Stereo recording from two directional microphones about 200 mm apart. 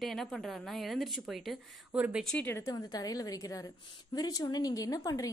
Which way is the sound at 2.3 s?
10° left (ahead or behind).